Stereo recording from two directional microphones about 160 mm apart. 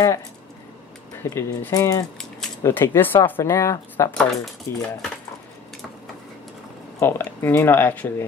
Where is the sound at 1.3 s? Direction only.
20° left (ahead or behind).